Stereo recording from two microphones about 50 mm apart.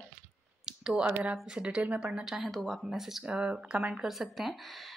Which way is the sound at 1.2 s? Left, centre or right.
Centre.